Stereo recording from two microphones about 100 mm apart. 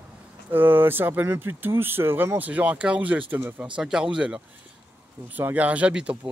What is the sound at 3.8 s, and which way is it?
Speech, 10° right (ahead or behind).